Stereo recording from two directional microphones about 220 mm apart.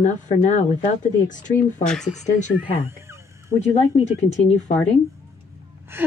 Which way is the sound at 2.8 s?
10° right (ahead or behind).